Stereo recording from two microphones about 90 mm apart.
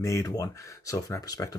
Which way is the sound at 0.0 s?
35° left (ahead or behind).